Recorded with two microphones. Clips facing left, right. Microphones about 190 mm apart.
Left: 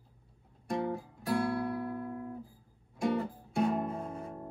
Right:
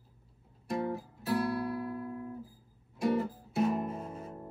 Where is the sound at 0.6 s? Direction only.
5° right (ahead or behind).